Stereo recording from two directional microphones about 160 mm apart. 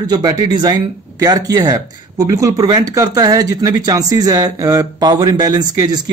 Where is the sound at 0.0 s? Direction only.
25° right (ahead or behind).